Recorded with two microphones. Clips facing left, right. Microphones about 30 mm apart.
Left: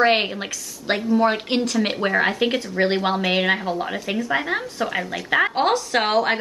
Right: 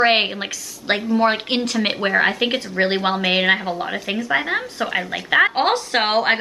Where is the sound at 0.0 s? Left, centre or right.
Right.